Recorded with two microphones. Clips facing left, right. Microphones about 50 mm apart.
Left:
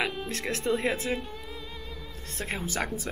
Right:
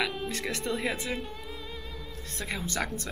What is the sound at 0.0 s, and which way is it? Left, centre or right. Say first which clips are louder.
Speech: even; centre.